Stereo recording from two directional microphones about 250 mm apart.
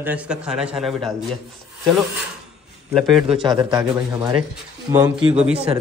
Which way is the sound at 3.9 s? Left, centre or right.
Centre.